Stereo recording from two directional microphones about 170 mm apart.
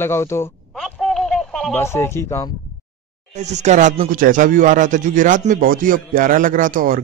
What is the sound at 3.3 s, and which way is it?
Speech, 40° right (ahead or behind).